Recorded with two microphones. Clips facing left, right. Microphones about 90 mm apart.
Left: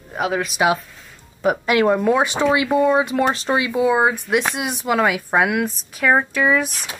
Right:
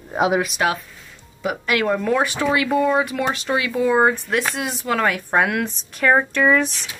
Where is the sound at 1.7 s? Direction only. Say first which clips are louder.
Left 3 dB; 20° left (ahead or behind).